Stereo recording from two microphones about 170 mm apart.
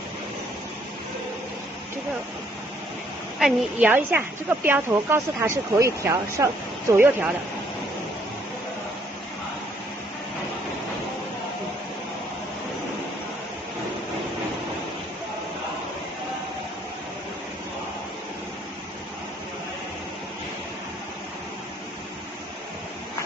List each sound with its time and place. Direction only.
3.3 s speech: 5° right (ahead or behind)